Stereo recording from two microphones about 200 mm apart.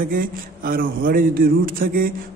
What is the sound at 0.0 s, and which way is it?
A man's voice, 45° right (ahead or behind).